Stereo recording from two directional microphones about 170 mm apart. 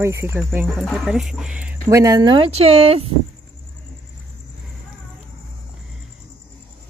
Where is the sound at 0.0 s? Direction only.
15° right (ahead or behind).